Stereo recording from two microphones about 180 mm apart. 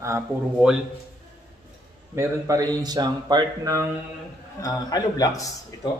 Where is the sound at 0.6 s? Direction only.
5° right (ahead or behind).